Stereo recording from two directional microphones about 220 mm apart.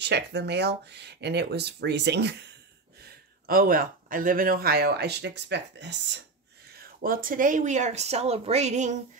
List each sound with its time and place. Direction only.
0.0 s speech: 50° right (ahead or behind)
3.0 s speech: 40° right (ahead or behind)
6.8 s speech: 40° right (ahead or behind)